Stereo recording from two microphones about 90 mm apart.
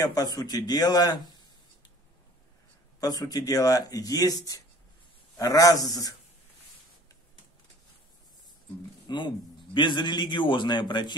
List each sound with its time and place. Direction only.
0.0 s speech: 45° left (ahead or behind)
3.0 s speech: 45° left (ahead or behind)
9.0 s a sound: 60° left (ahead or behind)
9.8 s a man's voice: 60° left (ahead or behind)